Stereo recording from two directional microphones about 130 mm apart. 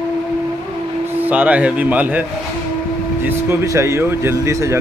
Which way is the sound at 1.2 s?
10° right (ahead or behind).